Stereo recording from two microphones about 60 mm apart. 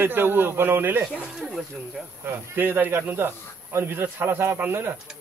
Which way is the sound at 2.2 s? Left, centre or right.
Right.